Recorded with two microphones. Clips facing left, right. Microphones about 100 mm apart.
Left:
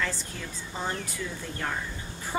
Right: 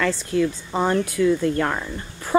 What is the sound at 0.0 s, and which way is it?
Speech, 75° right (ahead or behind).